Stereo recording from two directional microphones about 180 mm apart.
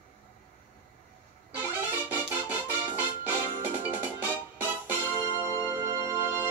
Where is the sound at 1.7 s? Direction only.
10° right (ahead or behind).